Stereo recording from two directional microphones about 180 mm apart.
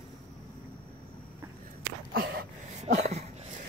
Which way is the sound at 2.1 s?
55° right (ahead or behind).